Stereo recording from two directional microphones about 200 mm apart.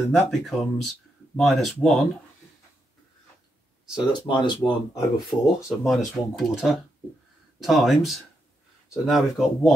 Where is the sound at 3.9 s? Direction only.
20° left (ahead or behind).